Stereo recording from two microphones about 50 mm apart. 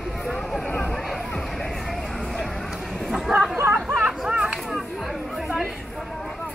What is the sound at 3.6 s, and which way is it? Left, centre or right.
Chatter, right.